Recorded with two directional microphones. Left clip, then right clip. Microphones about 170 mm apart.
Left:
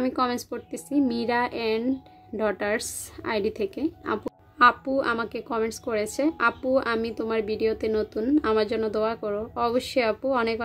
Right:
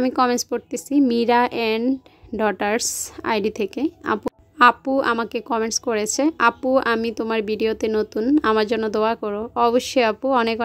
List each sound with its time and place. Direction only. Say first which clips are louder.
0.0 s a woman's voice: right 7 dB; 50° right (ahead or behind)